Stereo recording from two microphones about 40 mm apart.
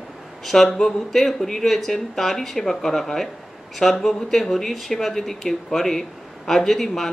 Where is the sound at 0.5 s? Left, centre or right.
Centre.